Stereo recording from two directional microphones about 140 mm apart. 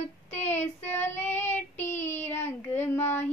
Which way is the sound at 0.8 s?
15° left (ahead or behind).